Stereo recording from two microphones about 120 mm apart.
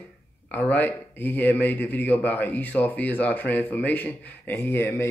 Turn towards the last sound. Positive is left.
turn(degrees=20)  # may be behind; listen again after turning